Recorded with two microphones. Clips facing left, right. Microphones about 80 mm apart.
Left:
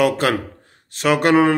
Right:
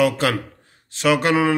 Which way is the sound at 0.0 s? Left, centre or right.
Left.